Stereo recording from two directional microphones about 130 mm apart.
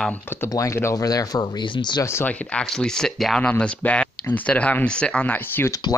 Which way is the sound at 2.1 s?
20° left (ahead or behind).